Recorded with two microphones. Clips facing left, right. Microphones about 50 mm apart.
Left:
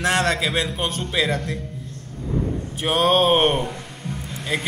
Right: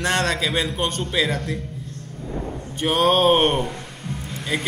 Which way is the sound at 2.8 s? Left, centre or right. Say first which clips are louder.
Right 1 dB; centre.